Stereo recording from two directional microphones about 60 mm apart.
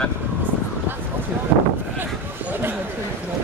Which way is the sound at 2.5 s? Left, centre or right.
Right.